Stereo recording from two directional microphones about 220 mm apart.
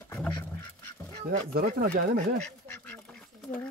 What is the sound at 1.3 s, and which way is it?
Speech, 40° right (ahead or behind).